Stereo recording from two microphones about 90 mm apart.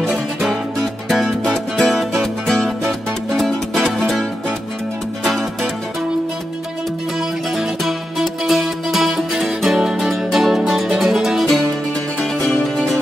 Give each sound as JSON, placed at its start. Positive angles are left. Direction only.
{"t": 0.0, "sound": "music", "side_deg": -5}
{"t": 5.2, "sound": "music", "side_deg": 0}
{"t": 7.2, "sound": "music", "side_deg": -5}